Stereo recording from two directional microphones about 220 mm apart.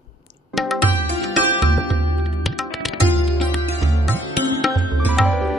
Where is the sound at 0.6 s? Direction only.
Centre (ahead or behind).